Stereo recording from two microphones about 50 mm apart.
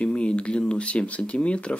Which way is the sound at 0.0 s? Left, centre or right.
Left.